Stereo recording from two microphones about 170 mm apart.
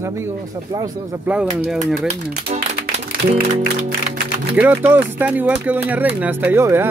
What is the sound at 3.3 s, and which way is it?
Music, 50° right (ahead or behind).